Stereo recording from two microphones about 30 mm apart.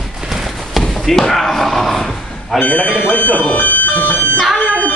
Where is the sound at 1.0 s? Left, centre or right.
Centre.